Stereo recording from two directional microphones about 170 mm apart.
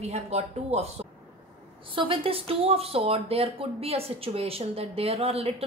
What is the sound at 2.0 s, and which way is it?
Speech, 30° right (ahead or behind).